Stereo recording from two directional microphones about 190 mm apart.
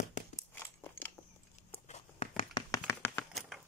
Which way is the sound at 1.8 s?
35° left (ahead or behind).